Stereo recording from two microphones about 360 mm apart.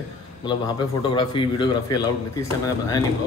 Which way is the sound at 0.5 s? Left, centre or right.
Centre.